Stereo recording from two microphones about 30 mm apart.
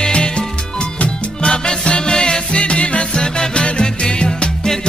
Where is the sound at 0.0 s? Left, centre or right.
Left.